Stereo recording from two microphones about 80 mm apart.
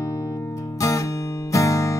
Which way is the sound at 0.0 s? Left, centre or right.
Left.